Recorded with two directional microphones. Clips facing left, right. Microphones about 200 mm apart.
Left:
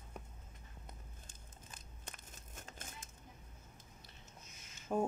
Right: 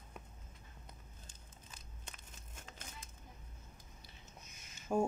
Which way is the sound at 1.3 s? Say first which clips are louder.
Left 1 dB; 50° left (ahead or behind).